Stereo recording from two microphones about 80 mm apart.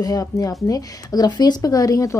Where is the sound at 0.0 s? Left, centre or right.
Left.